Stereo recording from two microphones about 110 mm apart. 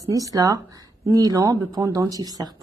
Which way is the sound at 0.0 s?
30° right (ahead or behind).